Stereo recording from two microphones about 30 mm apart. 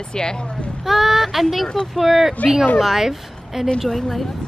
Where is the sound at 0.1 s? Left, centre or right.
Left.